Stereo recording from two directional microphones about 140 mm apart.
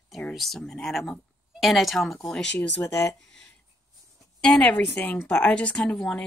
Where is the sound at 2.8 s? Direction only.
20° left (ahead or behind).